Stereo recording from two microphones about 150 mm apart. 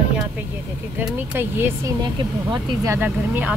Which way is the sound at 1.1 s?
15° right (ahead or behind).